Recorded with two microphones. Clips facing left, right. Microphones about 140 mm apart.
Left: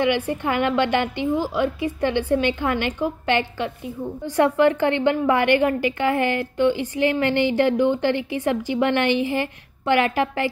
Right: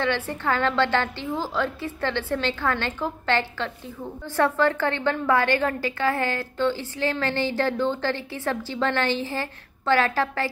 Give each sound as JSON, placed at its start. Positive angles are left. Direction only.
{"t": 0.0, "sound": "a woman's voice", "side_deg": 15}